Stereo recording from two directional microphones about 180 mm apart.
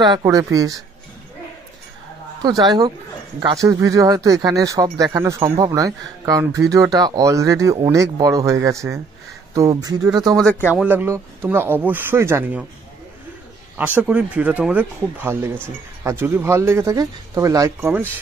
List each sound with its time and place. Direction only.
0.0 s speech: 20° right (ahead or behind)
2.4 s speech: 20° right (ahead or behind)
10.3 s speech: 5° left (ahead or behind)
10.7 s speech: 10° right (ahead or behind)
13.7 s speech: 10° right (ahead or behind)